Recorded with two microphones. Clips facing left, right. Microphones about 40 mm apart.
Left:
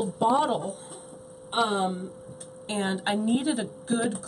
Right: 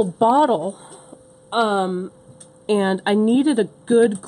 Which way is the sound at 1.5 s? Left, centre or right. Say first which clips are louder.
Right 7 dB; right.